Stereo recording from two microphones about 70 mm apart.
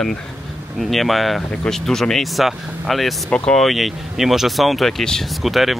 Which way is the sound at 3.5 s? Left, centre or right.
Centre.